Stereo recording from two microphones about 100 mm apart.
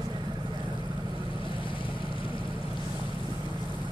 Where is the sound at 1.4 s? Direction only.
60° left (ahead or behind).